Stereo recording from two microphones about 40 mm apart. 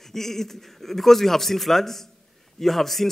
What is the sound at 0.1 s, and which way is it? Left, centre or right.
A man's voice, centre.